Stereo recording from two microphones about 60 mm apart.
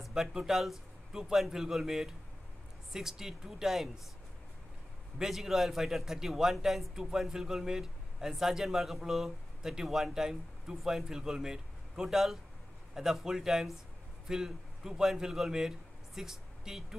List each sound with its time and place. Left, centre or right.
0.0 s a man's voice: centre
5.2 s a man's voice: centre